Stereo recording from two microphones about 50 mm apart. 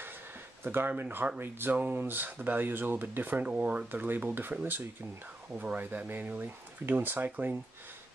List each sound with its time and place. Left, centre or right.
0.7 s speech: right
3.4 s speech: right